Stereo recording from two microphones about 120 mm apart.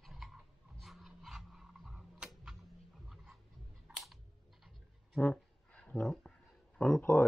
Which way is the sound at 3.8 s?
5° right (ahead or behind).